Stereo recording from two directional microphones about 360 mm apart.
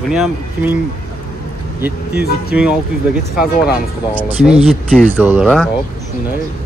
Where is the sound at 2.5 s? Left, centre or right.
Centre.